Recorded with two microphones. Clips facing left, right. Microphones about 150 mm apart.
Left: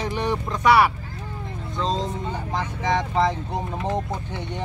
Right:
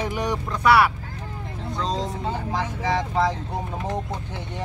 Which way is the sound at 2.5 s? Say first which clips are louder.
Left 2 dB; 5° right (ahead or behind).